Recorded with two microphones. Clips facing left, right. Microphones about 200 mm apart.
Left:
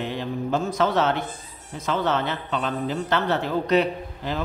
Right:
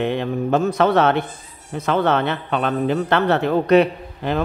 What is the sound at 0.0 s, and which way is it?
Speech, 60° right (ahead or behind).